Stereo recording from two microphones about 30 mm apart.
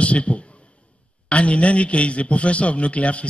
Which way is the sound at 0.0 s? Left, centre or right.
Left.